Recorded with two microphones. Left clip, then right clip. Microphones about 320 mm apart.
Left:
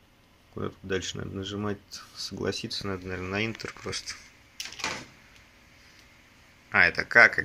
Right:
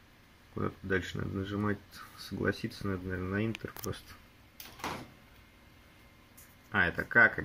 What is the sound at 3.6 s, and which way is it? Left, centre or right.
Speech, left.